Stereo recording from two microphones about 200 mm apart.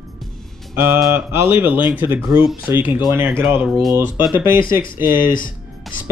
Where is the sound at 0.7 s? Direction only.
10° right (ahead or behind).